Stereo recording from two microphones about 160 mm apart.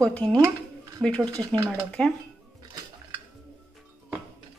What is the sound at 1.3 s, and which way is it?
Speech, 25° right (ahead or behind).